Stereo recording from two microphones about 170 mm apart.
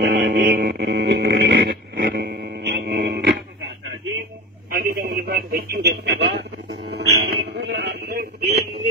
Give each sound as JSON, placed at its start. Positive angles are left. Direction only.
{"t": 0.0, "sound": "a sound", "side_deg": -90}
{"t": 2.0, "sound": "dog", "side_deg": -70}
{"t": 4.6, "sound": "radio", "side_deg": -60}